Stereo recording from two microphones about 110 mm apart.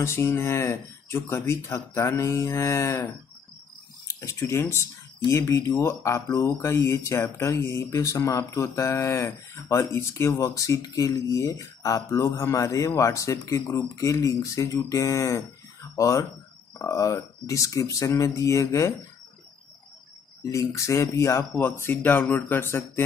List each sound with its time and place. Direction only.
0.0 s speech: 25° left (ahead or behind)
4.1 s speech: 30° left (ahead or behind)
20.4 s speech: 30° left (ahead or behind)